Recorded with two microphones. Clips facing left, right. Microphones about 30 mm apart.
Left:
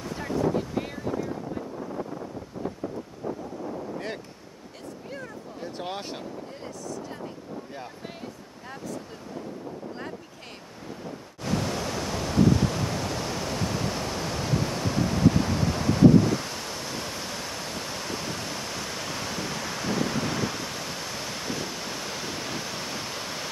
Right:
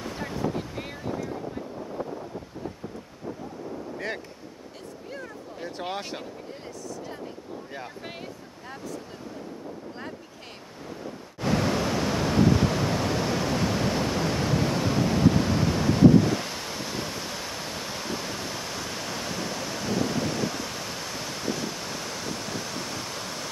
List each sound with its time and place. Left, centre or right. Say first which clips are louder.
0.0 s wind noise: left 3 dB; centre
5.6 s speech: right 1 dB; centre
8.6 s speech: left 1 dB; centre
11.4 s pink noise: right 4 dB; right; by 23.5 s centre